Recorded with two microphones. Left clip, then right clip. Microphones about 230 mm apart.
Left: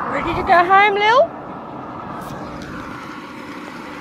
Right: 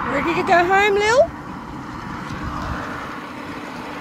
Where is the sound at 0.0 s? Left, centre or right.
Right.